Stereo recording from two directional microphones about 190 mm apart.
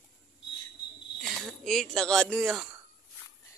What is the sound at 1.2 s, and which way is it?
Speech, centre (ahead or behind).